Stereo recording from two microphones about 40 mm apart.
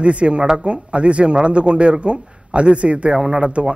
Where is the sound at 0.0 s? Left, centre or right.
Right.